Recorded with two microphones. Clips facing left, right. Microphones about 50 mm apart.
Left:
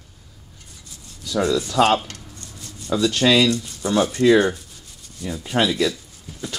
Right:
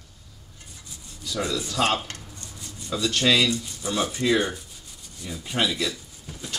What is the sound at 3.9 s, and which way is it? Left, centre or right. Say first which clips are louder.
Speech: left 7 dB; centre.